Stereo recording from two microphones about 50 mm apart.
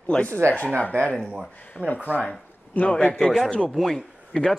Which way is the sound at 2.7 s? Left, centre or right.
Left.